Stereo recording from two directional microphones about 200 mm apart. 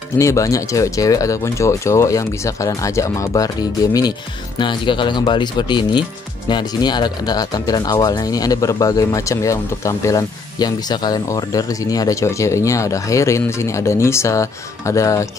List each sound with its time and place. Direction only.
0.2 s speech: 15° left (ahead or behind)